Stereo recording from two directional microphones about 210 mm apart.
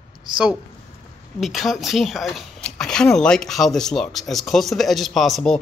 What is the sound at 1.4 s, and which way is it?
Speech, centre (ahead or behind).